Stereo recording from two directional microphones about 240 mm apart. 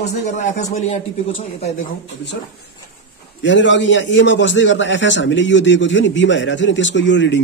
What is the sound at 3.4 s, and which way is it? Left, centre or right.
A man's voice, left.